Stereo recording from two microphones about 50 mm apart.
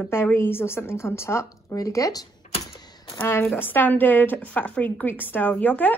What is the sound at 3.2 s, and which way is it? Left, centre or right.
A woman's voice, left.